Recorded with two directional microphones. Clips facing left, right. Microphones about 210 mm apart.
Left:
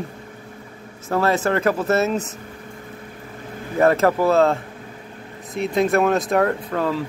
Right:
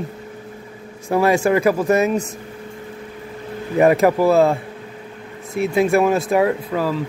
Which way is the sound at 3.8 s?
15° right (ahead or behind).